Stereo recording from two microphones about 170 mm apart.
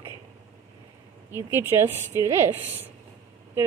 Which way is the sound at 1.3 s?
15° right (ahead or behind).